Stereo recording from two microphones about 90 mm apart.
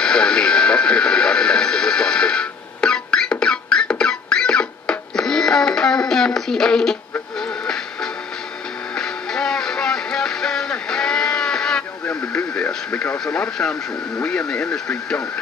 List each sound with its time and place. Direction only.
0.0 s radio: 10° left (ahead or behind)
4.0 s music: 10° left (ahead or behind)
12.1 s radio: 15° left (ahead or behind)
13.2 s speech: 10° left (ahead or behind)